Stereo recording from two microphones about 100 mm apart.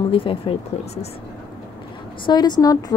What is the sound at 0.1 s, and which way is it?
Speech, 65° left (ahead or behind).